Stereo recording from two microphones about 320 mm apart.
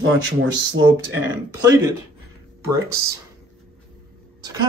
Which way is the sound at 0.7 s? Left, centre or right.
Right.